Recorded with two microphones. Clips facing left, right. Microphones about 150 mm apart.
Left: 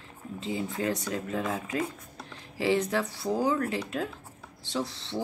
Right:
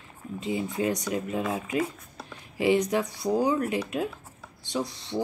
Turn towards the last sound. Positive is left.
turn(degrees=-15)  # may be behind; listen again after turning